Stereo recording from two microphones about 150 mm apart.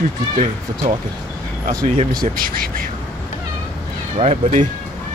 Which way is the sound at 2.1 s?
75° right (ahead or behind).